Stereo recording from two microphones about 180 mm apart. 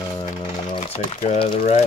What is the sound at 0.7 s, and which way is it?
Crumpling, 35° left (ahead or behind).